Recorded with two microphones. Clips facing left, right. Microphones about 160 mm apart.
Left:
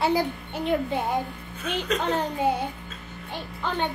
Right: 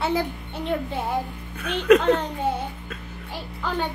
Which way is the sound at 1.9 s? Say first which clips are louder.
Right 13 dB; 60° right (ahead or behind).